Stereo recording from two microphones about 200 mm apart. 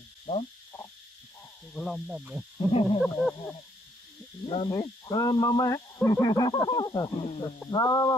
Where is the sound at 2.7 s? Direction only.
30° left (ahead or behind).